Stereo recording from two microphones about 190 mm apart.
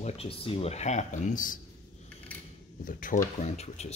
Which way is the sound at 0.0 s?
30° left (ahead or behind).